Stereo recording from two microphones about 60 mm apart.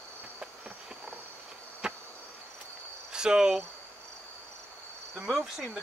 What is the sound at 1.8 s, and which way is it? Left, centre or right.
Insect, centre.